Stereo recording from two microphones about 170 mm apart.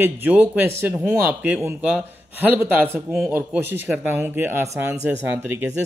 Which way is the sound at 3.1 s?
Centre (ahead or behind).